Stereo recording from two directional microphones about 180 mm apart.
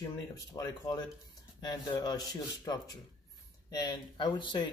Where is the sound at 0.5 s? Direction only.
20° left (ahead or behind).